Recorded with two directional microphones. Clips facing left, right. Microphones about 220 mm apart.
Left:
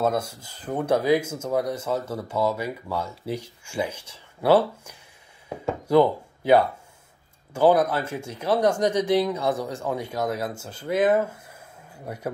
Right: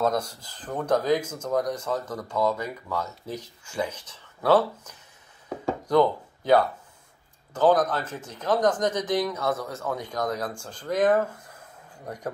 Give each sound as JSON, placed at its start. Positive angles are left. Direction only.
{"t": 0.0, "sound": "speech", "side_deg": 10}